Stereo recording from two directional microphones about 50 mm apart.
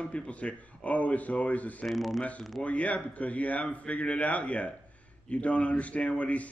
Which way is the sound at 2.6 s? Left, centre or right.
Left.